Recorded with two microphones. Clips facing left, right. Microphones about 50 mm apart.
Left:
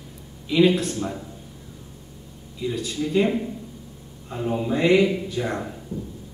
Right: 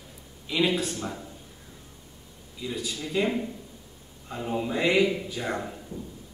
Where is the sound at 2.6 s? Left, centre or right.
Centre.